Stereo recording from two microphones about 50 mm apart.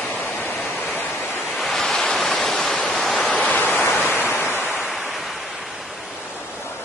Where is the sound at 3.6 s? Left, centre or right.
Left.